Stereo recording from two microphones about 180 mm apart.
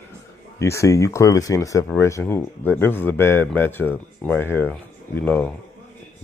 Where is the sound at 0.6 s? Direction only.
15° left (ahead or behind).